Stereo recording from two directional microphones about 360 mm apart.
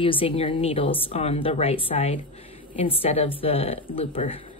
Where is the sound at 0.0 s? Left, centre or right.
Centre.